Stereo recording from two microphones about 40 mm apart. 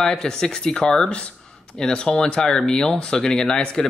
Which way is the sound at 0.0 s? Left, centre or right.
Centre.